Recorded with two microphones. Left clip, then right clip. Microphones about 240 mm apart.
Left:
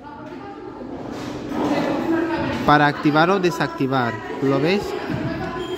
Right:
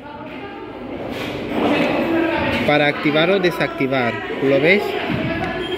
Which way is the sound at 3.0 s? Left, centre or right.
Left.